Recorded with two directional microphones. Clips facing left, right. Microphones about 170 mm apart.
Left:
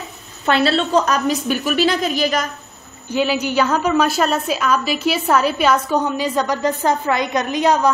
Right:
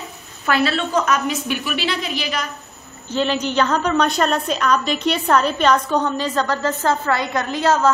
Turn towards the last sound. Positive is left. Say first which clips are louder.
# left 1 dB
turn(degrees=15)  # may be behind; listen again after turning